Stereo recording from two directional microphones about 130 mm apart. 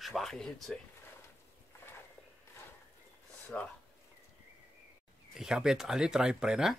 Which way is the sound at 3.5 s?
10° left (ahead or behind).